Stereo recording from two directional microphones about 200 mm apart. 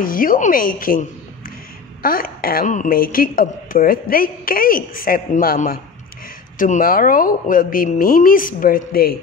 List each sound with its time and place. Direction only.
0.0 s a woman's voice: 45° left (ahead or behind)
2.0 s a woman's voice: 45° left (ahead or behind)